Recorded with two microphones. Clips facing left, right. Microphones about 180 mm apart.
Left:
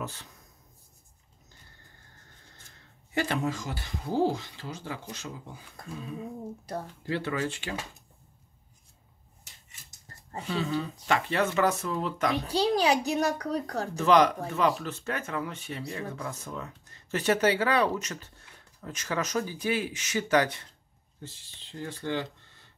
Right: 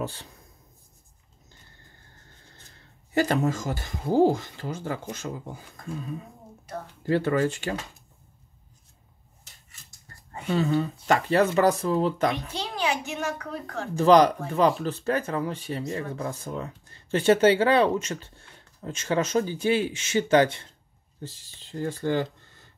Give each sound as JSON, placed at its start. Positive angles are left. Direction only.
{"t": 0.0, "sound": "speech", "side_deg": -30}
{"t": 3.2, "sound": "speech", "side_deg": -45}
{"t": 6.6, "sound": "a child's voice", "side_deg": 35}
{"t": 7.0, "sound": "speech", "side_deg": -45}
{"t": 10.5, "sound": "speech", "side_deg": -45}
{"t": 12.4, "sound": "a child's voice", "side_deg": 35}
{"t": 13.9, "sound": "speech", "side_deg": -35}
{"t": 21.2, "sound": "speech", "side_deg": -40}